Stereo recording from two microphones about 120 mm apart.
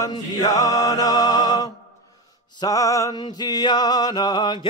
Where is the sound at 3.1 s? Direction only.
40° left (ahead or behind).